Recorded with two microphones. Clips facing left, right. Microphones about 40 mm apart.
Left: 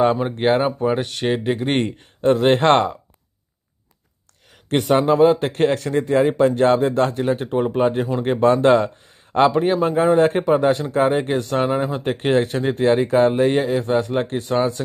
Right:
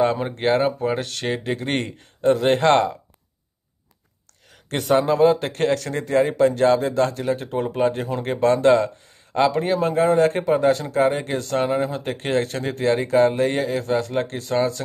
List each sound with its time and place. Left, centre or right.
0.0 s speech: centre
2.0 s speech: left
4.6 s speech: left
6.3 s speech: left